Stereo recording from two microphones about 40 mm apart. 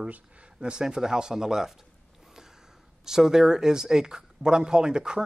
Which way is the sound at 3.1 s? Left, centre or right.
Centre.